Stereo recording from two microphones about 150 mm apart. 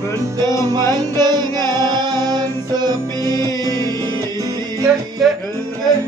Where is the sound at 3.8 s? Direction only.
20° left (ahead or behind).